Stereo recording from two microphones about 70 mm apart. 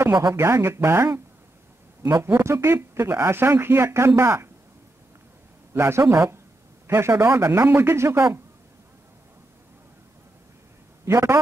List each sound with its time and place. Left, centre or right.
0.1 s speech: right
0.4 s speech: right
2.2 s speech: right
5.7 s speech: right
11.1 s a man's voice: right